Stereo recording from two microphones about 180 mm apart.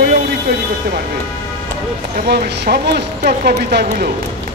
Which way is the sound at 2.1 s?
65° right (ahead or behind).